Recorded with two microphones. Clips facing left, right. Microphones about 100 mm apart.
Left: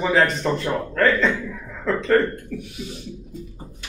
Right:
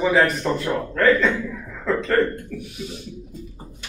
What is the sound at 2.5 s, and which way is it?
Speech, centre (ahead or behind).